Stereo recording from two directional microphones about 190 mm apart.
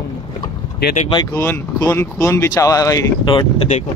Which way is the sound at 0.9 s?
30° left (ahead or behind).